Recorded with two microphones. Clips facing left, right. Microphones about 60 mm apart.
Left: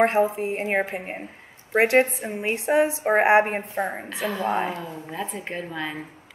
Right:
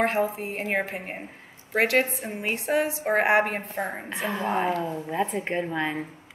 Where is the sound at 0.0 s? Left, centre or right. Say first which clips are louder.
Left 4 dB; left.